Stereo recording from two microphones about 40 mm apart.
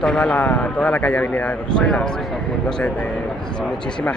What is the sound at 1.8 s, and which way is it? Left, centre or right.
Speech, left.